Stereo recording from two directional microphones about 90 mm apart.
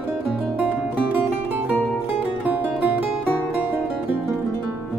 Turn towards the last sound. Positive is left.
turn(degrees=-20)  # may be behind; listen again after turning